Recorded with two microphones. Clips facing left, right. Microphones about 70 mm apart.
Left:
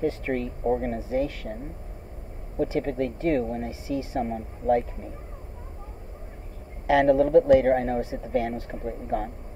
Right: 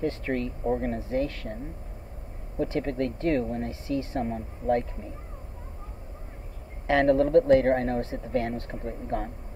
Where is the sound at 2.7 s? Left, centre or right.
Centre.